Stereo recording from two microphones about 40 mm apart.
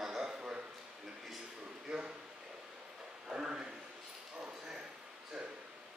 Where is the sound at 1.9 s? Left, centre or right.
Right.